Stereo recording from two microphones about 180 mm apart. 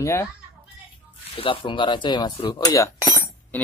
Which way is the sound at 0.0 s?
15° left (ahead or behind).